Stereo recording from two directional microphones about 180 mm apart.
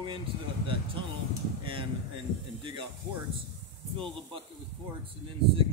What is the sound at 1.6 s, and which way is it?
Speech, 30° right (ahead or behind).